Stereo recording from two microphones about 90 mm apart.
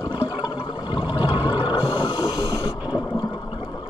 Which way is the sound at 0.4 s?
70° left (ahead or behind).